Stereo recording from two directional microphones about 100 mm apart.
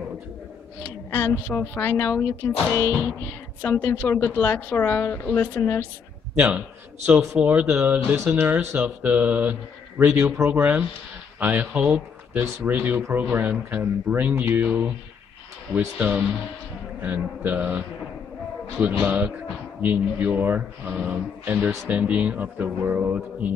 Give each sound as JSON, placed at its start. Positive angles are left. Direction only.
{"t": 0.8, "sound": "a woman's voice", "side_deg": 20}
{"t": 3.6, "sound": "a woman's voice", "side_deg": 15}
{"t": 6.3, "sound": "a man's voice", "side_deg": -25}
{"t": 7.3, "sound": "speech", "side_deg": -10}
{"t": 16.0, "sound": "speech", "side_deg": -15}